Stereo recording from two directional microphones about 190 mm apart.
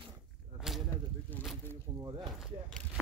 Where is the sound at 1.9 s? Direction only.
20° right (ahead or behind).